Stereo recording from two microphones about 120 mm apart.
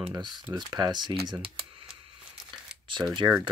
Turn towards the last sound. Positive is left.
turn(degrees=-30)  # may be behind; listen again after turning